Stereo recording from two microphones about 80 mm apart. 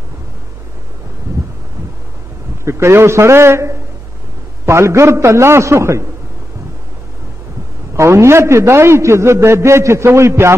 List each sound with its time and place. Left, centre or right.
2.6 s a man's voice: right
7.9 s a man's voice: right